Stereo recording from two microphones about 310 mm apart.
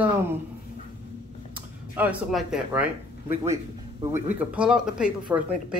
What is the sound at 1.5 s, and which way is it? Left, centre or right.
Speech, centre.